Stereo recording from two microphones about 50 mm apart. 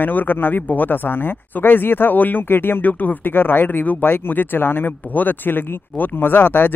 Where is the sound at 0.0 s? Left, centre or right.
Left.